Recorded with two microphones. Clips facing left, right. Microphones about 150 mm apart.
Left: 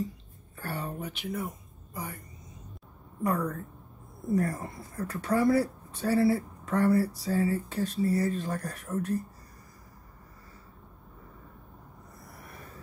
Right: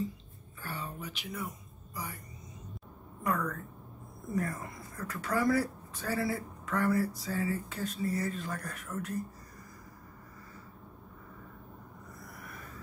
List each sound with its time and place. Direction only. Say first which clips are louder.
0.6 s a sound: left 5 dB; 60° left (ahead or behind)
0.9 s speech: left 6 dB; 55° left (ahead or behind)
3.3 s a woman's voice: left 3 dB; 35° left (ahead or behind)
12.4 s vehicle: left 2 dB; 35° left (ahead or behind)